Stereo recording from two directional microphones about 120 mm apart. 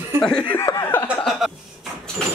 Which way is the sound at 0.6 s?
25° left (ahead or behind).